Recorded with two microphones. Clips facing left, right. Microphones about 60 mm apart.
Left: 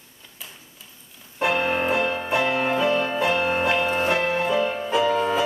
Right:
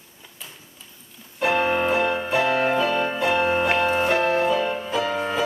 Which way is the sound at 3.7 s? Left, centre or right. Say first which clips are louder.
Right 2 dB; centre.